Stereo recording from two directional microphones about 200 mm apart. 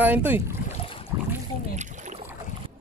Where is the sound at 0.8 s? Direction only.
25° left (ahead or behind).